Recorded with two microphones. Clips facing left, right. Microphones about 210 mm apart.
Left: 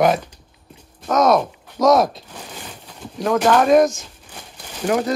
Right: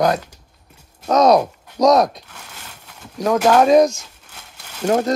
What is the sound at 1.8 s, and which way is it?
Speech, centre (ahead or behind).